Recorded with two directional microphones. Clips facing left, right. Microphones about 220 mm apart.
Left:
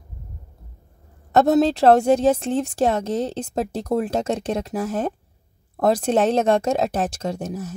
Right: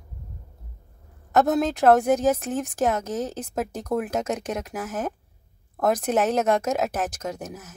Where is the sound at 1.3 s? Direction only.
30° left (ahead or behind).